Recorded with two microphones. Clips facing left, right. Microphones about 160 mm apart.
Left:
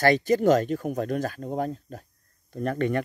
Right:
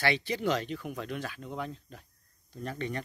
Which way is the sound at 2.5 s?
55° left (ahead or behind).